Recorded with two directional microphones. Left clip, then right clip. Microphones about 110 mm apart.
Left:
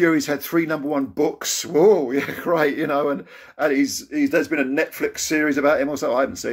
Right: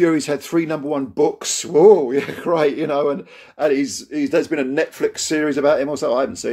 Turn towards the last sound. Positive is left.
turn(degrees=-20)  # may be behind; listen again after turning